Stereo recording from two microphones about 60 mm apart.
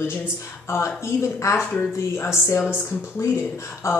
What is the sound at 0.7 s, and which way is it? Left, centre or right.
Speech, left.